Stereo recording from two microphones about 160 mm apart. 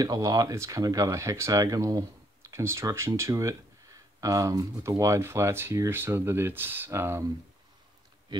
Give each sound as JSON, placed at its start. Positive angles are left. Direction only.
{"t": 0.0, "sound": "speech", "side_deg": -25}